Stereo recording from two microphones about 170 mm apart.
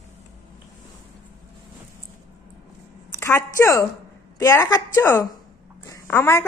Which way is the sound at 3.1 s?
15° left (ahead or behind).